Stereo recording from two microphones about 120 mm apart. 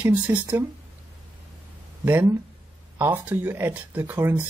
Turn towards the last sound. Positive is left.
turn(degrees=-20)  # may be behind; listen again after turning